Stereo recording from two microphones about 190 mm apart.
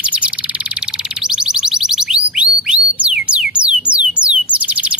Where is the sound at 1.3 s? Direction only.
5° right (ahead or behind).